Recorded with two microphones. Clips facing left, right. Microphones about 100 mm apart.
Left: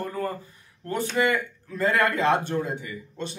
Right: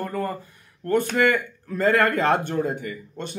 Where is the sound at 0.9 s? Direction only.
55° right (ahead or behind).